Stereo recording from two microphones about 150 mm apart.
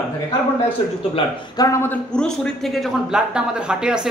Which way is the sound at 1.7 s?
15° left (ahead or behind).